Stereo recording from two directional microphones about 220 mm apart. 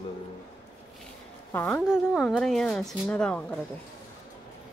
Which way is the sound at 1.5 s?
10° left (ahead or behind).